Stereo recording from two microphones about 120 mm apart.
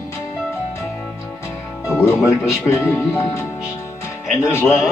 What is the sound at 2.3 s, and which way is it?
Speech, 25° left (ahead or behind).